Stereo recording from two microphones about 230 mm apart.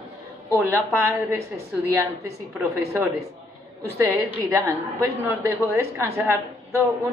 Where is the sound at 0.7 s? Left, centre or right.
Centre.